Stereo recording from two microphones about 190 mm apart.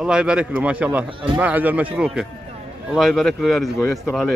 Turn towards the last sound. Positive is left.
turn(degrees=0)  # may be behind; listen again after turning